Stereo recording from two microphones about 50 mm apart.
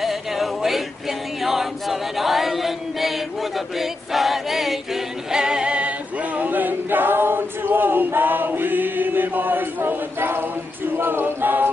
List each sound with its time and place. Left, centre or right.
0.0 s male singing: centre
1.4 s choir: centre
5.3 s a capella: centre; by 11.7 s right